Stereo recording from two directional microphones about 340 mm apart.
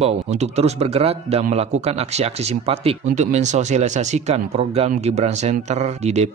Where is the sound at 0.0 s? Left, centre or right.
Centre.